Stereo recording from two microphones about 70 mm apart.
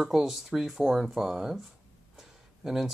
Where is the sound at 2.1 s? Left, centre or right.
Centre.